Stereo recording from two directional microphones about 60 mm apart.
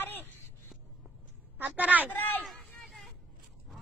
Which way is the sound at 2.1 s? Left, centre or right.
Left.